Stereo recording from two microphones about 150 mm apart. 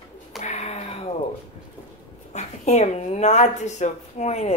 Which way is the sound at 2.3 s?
45° left (ahead or behind).